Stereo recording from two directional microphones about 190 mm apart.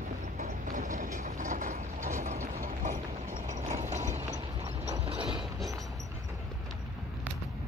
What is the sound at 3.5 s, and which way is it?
Clip-clop, 40° right (ahead or behind).